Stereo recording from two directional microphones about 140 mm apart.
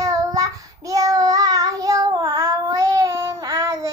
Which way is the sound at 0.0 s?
25° right (ahead or behind).